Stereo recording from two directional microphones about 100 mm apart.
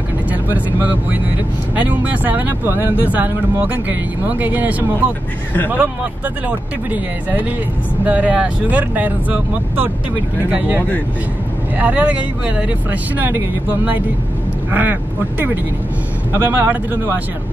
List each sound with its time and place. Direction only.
0.3 s speech: 15° right (ahead or behind)
4.4 s speech: 15° right (ahead or behind)
11.8 s speech: 15° right (ahead or behind)